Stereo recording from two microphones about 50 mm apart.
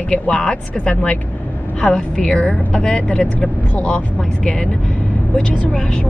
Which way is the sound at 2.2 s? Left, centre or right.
Left.